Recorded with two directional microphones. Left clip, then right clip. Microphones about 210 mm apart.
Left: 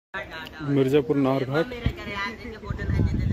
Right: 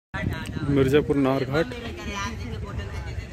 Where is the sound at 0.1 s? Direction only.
50° right (ahead or behind).